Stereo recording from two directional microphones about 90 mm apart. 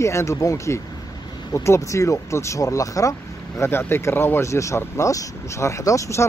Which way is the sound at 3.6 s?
25° left (ahead or behind).